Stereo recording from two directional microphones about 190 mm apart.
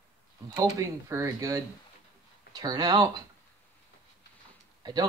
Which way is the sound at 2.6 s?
20° right (ahead or behind).